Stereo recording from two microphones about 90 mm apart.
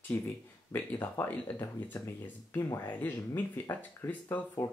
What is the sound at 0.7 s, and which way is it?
Speech, 25° left (ahead or behind).